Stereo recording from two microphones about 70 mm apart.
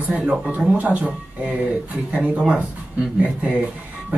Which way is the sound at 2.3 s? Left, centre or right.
Centre.